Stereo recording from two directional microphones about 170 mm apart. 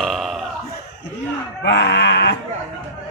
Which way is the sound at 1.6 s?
90° left.